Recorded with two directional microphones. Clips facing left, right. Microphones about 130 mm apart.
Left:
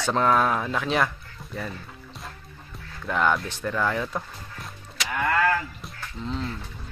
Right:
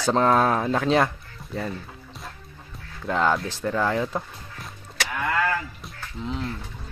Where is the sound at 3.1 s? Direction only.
25° right (ahead or behind).